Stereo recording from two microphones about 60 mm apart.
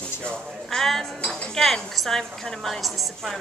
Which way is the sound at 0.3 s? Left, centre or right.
Centre.